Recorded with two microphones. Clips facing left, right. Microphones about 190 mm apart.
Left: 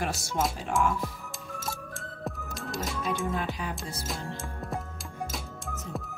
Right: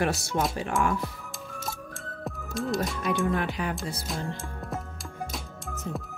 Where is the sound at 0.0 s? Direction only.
65° right (ahead or behind).